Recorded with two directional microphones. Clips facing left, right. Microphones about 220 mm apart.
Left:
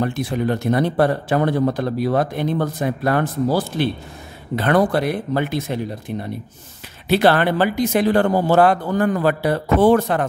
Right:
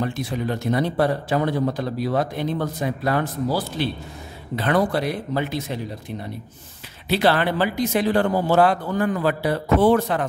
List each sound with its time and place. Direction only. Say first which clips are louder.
0.0 s speech: left 4 dB; 55° left (ahead or behind)